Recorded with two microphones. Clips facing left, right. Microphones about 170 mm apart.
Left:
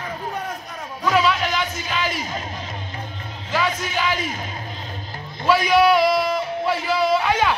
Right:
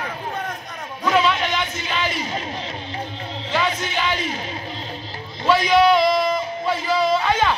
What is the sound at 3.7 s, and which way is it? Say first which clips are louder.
Speech: right 1 dB; 45° left (ahead or behind).